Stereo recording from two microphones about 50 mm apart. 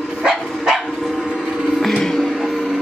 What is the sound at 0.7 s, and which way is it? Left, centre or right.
Dog, centre.